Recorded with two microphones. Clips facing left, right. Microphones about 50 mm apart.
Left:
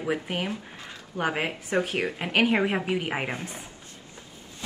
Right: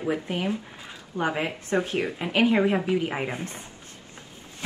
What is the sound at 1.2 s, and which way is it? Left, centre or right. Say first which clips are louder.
Speech: right 1 dB; left.